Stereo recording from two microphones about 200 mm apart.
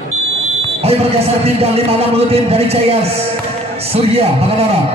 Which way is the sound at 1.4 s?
30° right (ahead or behind).